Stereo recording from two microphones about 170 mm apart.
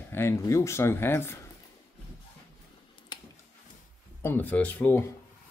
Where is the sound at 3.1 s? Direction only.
25° left (ahead or behind).